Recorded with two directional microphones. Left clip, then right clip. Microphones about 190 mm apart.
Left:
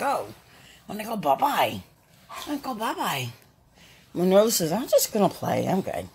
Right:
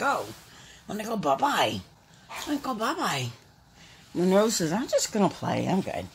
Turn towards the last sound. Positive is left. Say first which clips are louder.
# left 3 dB
turn(degrees=10)  # may be behind; listen again after turning